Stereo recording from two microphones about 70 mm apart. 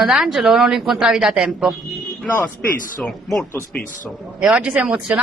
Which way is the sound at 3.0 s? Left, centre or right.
Centre.